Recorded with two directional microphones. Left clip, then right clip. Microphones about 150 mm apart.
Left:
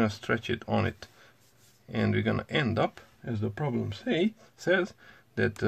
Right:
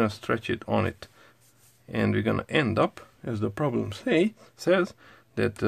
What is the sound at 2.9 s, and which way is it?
Speech, 50° right (ahead or behind).